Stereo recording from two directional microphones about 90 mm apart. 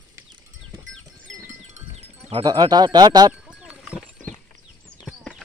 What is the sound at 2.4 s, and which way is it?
Speech, 50° right (ahead or behind).